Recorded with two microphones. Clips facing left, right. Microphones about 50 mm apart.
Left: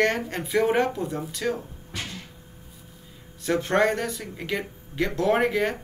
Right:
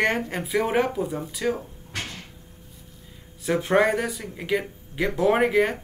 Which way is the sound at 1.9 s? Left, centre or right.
Right.